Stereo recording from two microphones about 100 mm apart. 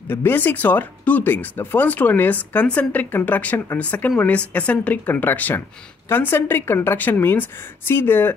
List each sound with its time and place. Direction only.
0.1 s a woman's voice: 20° left (ahead or behind)